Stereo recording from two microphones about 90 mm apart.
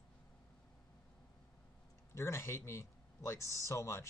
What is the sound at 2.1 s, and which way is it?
A man's voice, 30° left (ahead or behind).